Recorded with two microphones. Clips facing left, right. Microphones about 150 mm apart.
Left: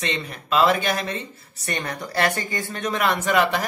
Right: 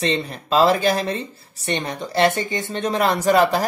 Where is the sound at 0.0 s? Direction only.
30° right (ahead or behind).